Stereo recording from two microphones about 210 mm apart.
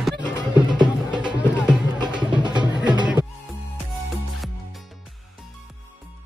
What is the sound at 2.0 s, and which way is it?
Music, 20° right (ahead or behind).